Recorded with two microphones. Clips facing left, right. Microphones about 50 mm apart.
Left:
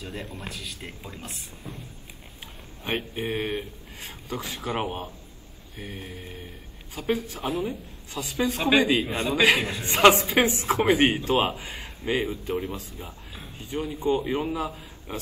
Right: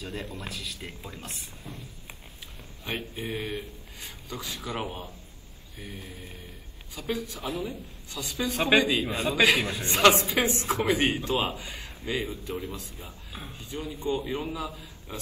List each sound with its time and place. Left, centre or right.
0.1 s speech: centre
2.8 s speech: left